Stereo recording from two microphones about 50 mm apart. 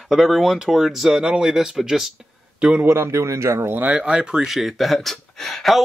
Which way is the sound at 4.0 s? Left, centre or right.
Centre.